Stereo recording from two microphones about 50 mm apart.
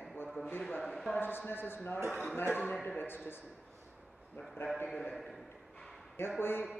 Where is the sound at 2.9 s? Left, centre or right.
Left.